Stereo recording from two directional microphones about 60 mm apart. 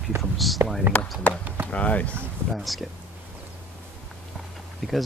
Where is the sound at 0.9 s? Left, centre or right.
Right.